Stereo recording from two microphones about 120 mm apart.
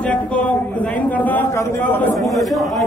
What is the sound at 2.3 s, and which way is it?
Speech, centre (ahead or behind).